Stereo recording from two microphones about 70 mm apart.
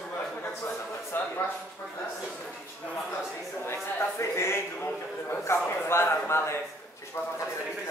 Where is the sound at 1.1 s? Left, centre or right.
Left.